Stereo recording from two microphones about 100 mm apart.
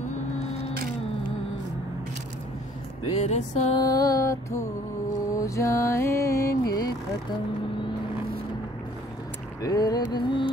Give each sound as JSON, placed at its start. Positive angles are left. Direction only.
{"t": 3.2, "sound": "music", "side_deg": 90}
{"t": 3.7, "sound": "music", "side_deg": 40}
{"t": 9.6, "sound": "mantra", "side_deg": 40}